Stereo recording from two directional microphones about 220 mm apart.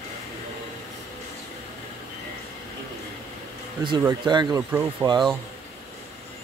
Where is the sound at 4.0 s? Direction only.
15° right (ahead or behind).